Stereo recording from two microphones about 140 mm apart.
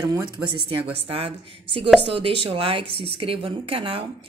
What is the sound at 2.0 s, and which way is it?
A woman's voice, 40° right (ahead or behind).